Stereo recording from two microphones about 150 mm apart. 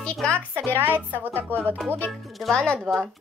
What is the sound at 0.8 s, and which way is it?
Speech, 15° right (ahead or behind).